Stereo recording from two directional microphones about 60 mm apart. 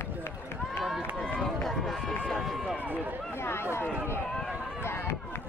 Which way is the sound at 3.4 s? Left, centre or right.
Left.